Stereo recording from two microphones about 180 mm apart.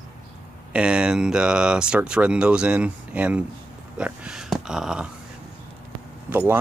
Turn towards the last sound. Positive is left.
turn(degrees=-10)  # may be behind; listen again after turning